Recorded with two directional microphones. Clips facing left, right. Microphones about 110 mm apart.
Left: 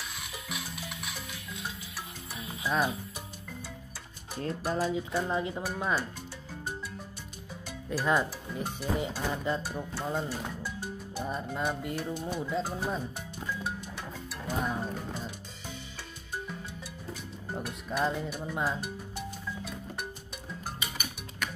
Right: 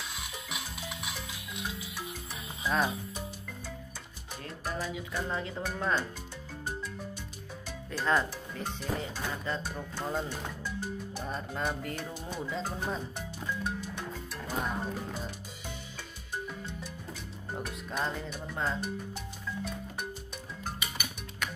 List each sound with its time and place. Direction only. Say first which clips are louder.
0.7 s music: right 1 dB; 15° right (ahead or behind)
2.6 s speech: left 1 dB; 5° left (ahead or behind)
4.4 s speech: left 6 dB; 35° left (ahead or behind)
5.1 s speech: left 4 dB; 20° left (ahead or behind)
7.9 s speech: left 1 dB; 10° left (ahead or behind)
14.5 s music: left 2 dB; centre (ahead or behind)
17.6 s speech: left 5 dB; 5° left (ahead or behind)